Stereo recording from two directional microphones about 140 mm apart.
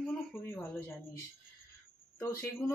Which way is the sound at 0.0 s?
Centre (ahead or behind).